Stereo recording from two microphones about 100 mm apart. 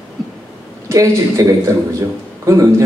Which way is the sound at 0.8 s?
30° right (ahead or behind).